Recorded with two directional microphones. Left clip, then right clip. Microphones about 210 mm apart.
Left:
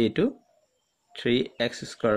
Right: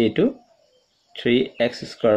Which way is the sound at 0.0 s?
50° left (ahead or behind).